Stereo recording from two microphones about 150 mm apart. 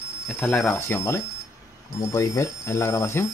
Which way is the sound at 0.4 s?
10° left (ahead or behind).